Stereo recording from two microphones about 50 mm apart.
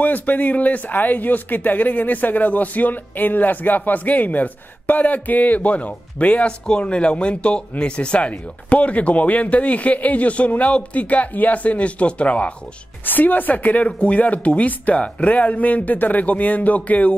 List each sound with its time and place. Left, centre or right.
0.0 s speech: left
13.0 s speech: left